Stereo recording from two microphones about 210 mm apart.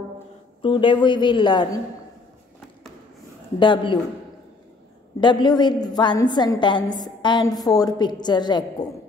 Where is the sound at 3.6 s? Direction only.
25° left (ahead or behind).